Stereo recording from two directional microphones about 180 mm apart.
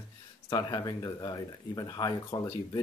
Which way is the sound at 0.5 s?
20° left (ahead or behind).